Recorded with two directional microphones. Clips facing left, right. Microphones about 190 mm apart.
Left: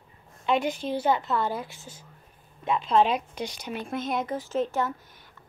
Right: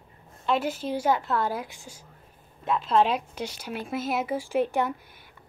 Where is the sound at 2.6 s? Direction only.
Centre (ahead or behind).